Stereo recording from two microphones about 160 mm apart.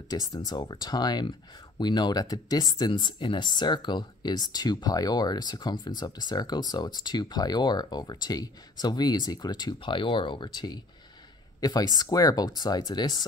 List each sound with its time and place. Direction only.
0.3 s speech: 25° left (ahead or behind)